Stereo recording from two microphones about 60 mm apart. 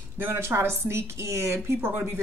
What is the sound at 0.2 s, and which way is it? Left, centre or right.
Speech, right.